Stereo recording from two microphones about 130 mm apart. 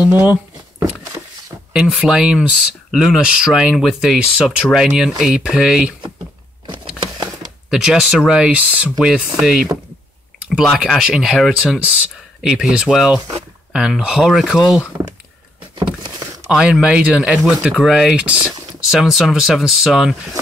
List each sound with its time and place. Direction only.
0.0 s speech: 10° right (ahead or behind)
1.7 s speech: 5° right (ahead or behind)
6.7 s a sound: 40° right (ahead or behind)
7.7 s speech: 5° right (ahead or behind)
10.5 s speech: centre (ahead or behind)
14.9 s speech: 15° right (ahead or behind)
15.8 s vehicle: 35° right (ahead or behind)
16.4 s speech: 5° right (ahead or behind)